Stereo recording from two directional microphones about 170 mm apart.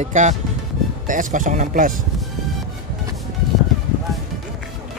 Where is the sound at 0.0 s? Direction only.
45° right (ahead or behind).